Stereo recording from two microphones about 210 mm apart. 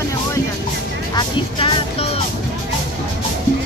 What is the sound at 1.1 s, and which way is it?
Speech, 25° left (ahead or behind).